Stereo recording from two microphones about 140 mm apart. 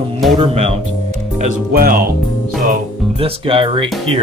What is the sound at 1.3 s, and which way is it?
Speech, 75° right (ahead or behind).